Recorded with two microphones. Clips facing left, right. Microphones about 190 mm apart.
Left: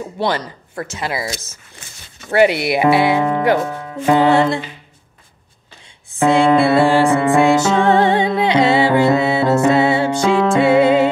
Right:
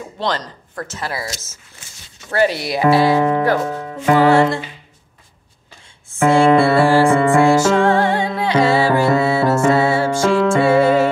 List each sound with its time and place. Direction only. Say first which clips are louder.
0.2 s speech: left 2 dB; 10° left (ahead or behind)
2.7 s music: even; 20° left (ahead or behind)
6.1 s music: right 1 dB; 20° left (ahead or behind)